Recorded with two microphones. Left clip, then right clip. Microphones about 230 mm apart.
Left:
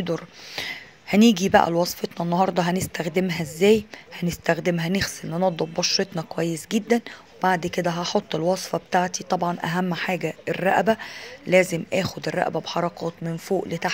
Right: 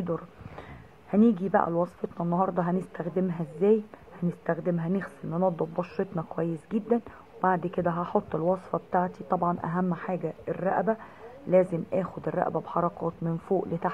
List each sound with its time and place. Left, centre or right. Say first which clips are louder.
0.0 s speech: left 5 dB; left
11.9 s speech: left 4 dB; left